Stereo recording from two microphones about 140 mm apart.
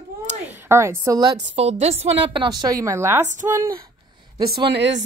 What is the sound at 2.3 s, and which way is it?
Speech, 30° right (ahead or behind).